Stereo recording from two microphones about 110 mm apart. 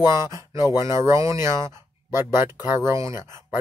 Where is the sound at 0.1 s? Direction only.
25° right (ahead or behind).